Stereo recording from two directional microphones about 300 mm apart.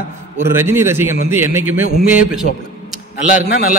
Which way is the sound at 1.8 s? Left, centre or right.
Left.